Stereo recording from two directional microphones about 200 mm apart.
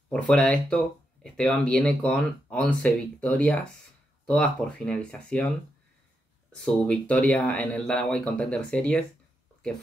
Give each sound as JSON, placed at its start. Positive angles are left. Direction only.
{"t": 0.1, "sound": "speech", "side_deg": 5}
{"t": 6.5, "sound": "speech", "side_deg": 5}